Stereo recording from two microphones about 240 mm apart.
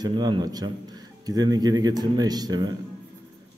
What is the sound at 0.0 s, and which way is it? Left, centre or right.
Speech, centre.